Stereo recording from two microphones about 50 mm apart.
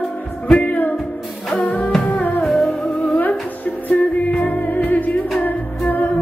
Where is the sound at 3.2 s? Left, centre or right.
Left.